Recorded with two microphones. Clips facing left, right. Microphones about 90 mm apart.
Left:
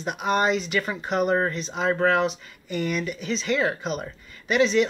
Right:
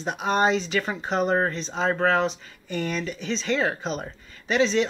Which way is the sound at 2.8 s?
35° right (ahead or behind).